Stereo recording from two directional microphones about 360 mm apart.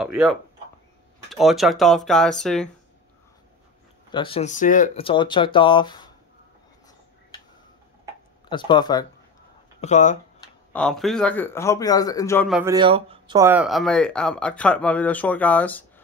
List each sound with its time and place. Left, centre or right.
0.0 s a man's voice: centre
4.1 s speech: centre
8.5 s speech: centre
10.7 s a man's voice: centre